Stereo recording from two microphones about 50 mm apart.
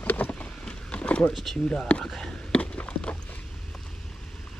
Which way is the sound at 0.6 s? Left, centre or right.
Left.